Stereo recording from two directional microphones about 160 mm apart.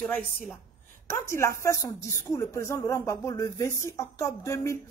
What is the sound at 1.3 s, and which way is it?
Speech, 15° left (ahead or behind).